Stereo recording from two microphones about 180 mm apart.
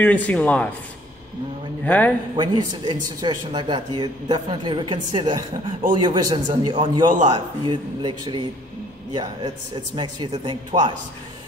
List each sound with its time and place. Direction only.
0.0 s speech: 10° left (ahead or behind)
1.9 s speech: 10° left (ahead or behind)
2.3 s a man's voice: 25° right (ahead or behind)